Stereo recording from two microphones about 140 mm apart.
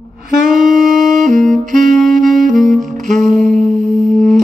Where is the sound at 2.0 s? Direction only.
Centre (ahead or behind).